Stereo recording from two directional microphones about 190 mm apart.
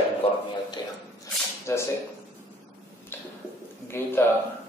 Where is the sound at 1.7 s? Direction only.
15° left (ahead or behind).